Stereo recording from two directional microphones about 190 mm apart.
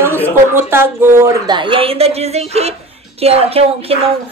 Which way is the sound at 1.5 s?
25° right (ahead or behind).